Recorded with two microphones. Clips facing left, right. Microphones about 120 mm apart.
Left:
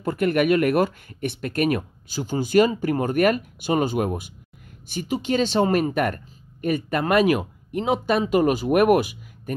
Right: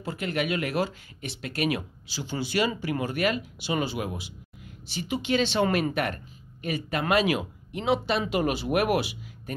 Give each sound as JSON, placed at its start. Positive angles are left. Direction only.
{"t": 0.0, "sound": "speech", "side_deg": 55}